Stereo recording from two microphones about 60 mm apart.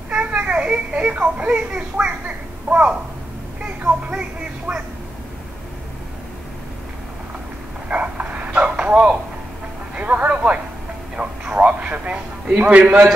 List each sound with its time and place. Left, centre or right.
0.1 s a child's voice: right
7.9 s a sound: right
9.9 s a man's voice: right